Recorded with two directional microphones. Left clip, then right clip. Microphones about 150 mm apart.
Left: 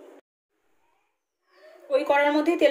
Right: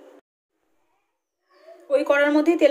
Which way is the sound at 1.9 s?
15° right (ahead or behind).